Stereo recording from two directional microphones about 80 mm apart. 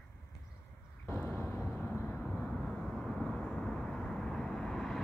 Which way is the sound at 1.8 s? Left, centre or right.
Centre.